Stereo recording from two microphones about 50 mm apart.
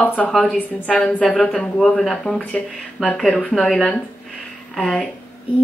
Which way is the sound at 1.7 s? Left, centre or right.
Centre.